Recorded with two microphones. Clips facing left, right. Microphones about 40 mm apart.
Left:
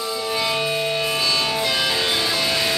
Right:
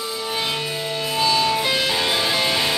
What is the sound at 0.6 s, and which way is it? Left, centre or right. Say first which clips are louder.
Music: left 4 dB; left.